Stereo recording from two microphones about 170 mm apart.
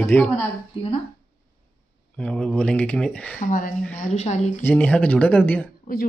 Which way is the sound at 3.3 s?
50° left (ahead or behind).